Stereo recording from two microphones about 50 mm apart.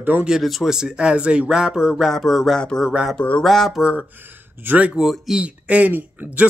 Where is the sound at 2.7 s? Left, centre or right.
Centre.